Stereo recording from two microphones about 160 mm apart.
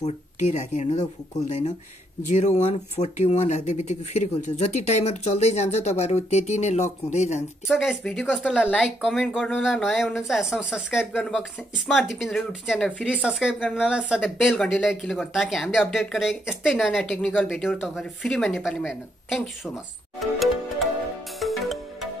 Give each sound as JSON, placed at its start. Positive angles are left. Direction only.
{"t": 0.0, "sound": "speech", "side_deg": 45}
{"t": 7.6, "sound": "speech", "side_deg": -5}
{"t": 21.4, "sound": "music", "side_deg": 0}